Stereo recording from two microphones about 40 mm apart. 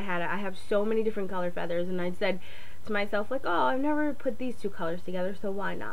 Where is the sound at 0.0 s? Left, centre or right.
Centre.